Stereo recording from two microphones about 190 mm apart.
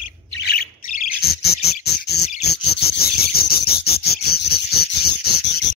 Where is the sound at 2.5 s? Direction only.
55° left (ahead or behind).